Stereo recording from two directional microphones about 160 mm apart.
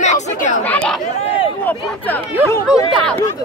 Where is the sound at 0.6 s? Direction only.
10° left (ahead or behind).